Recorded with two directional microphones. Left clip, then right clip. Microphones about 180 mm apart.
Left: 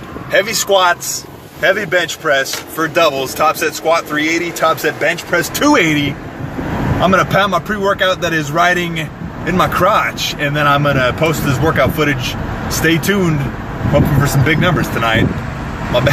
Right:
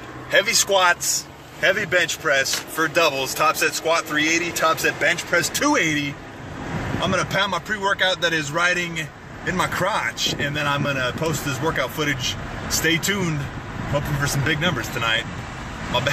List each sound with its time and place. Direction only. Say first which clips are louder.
0.3 s a man's voice: left 5 dB; centre (ahead or behind)
7.8 s speech: left 4 dB; 20° right (ahead or behind)
9.5 s a man's voice: left 10 dB; centre (ahead or behind)